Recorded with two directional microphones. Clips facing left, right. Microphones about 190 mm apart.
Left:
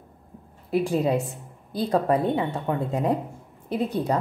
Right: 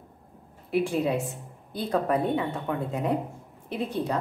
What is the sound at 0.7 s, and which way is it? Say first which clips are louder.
A woman's voice: left 2 dB; 40° left (ahead or behind).